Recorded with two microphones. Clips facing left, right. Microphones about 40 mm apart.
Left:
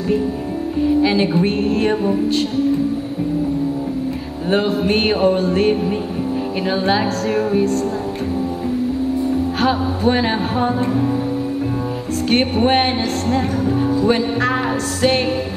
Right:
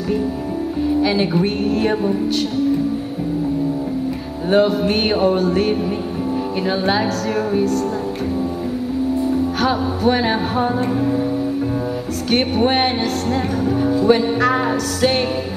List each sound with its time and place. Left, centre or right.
1.0 s music: centre
1.4 s a woman's voice: left
5.5 s music: left
9.7 s music: centre
12.3 s music: left
13.8 s music: centre